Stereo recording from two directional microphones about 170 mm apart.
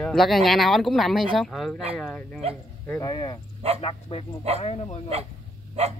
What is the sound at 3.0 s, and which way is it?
Speech, 25° left (ahead or behind).